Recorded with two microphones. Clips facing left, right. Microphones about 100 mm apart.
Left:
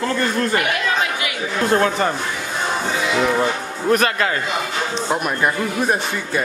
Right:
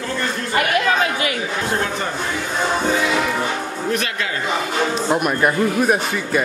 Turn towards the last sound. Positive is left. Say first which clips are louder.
# right 2 dB
turn(degrees=-5)  # may be behind; listen again after turning